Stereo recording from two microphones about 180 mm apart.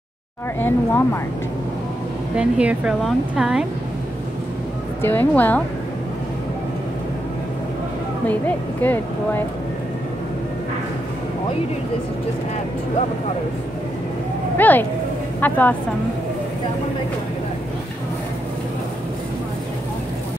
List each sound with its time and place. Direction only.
0.6 s speech: 10° left (ahead or behind)
2.3 s speech: 5° right (ahead or behind)
5.0 s speech: 10° left (ahead or behind)
8.3 s speech: 10° left (ahead or behind)
14.6 s speech: 10° left (ahead or behind)